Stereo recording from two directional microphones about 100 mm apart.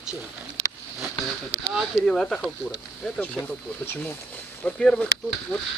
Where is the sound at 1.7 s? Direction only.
Centre (ahead or behind); by 4.2 s 20° left (ahead or behind).